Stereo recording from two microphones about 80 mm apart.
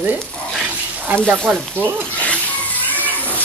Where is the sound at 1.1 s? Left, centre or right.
Right.